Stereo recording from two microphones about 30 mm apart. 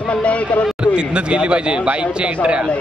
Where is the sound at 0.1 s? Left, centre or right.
Left.